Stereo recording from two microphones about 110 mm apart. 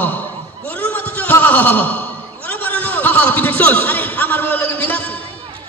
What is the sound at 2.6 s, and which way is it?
A man's voice, 15° left (ahead or behind).